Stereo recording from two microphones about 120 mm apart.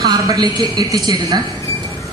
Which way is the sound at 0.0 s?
30° right (ahead or behind).